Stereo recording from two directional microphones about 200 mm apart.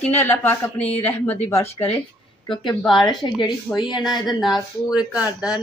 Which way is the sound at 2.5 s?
25° left (ahead or behind).